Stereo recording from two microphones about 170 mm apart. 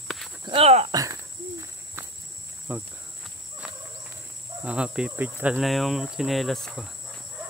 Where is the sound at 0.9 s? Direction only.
20° right (ahead or behind).